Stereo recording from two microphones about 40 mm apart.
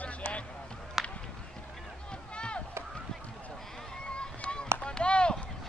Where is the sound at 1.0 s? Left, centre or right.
Centre.